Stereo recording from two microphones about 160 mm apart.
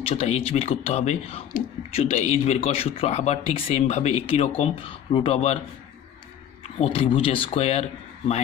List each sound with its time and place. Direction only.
0.0 s speech: 40° left (ahead or behind)
6.8 s speech: 35° left (ahead or behind)